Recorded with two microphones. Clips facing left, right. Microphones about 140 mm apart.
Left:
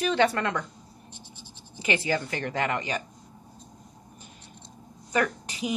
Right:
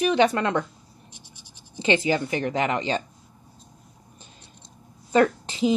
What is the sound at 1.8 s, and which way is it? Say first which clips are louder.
Speech: right 5 dB; 20° right (ahead or behind).